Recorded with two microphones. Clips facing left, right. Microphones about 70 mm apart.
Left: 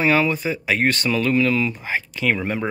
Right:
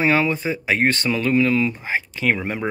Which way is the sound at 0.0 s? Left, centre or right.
Right.